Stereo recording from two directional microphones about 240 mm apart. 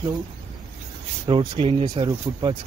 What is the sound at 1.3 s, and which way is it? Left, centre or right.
Speech, right.